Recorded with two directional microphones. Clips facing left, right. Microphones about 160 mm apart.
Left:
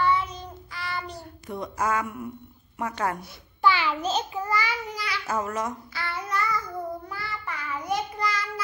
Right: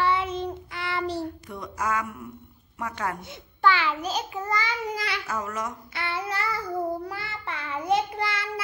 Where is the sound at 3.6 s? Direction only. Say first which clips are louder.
Even; 15° left (ahead or behind).